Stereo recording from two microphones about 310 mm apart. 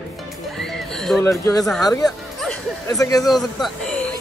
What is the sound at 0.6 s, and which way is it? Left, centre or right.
Music, centre.